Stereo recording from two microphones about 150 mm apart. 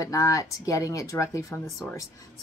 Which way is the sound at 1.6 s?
Centre (ahead or behind).